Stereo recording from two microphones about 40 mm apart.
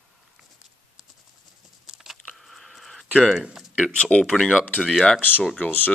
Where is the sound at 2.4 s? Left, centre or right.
Centre.